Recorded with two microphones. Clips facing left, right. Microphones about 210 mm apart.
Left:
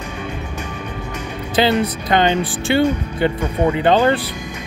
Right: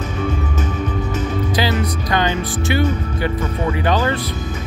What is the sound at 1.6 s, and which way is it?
Speech, 25° left (ahead or behind).